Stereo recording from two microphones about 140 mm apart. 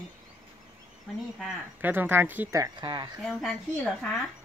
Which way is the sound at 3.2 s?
Centre (ahead or behind).